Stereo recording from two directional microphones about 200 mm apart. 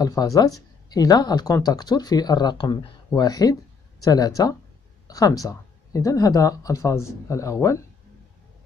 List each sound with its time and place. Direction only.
0.0 s speech: 20° left (ahead or behind)